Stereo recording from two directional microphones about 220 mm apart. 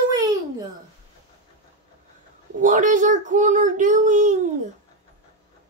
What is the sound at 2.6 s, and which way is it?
A child's voice, 35° right (ahead or behind).